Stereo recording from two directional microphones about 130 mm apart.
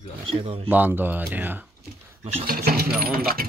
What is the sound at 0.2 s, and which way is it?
Speech, 45° right (ahead or behind).